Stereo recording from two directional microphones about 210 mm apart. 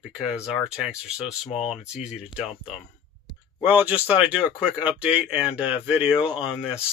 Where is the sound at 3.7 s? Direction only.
5° right (ahead or behind).